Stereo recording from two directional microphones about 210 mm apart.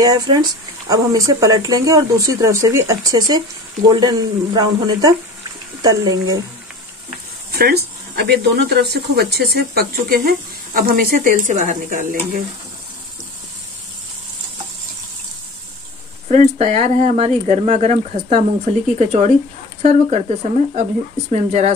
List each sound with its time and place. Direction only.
0.0 s speech: 20° right (ahead or behind)
8.2 s speech: 50° right (ahead or behind)
16.3 s speech: 35° right (ahead or behind)